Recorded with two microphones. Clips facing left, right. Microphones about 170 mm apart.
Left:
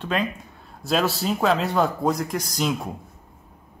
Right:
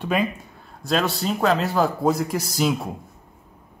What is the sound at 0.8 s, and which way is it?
A man's voice, centre (ahead or behind).